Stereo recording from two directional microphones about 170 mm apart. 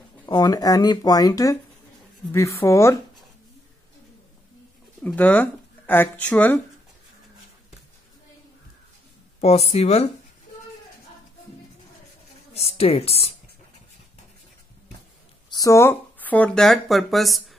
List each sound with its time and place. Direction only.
0.3 s speech: 20° left (ahead or behind)
5.0 s speech: 10° left (ahead or behind)
9.4 s speech: 40° left (ahead or behind)
12.5 s speech: 35° left (ahead or behind)
15.5 s speech: 20° left (ahead or behind); by 17.4 s centre (ahead or behind)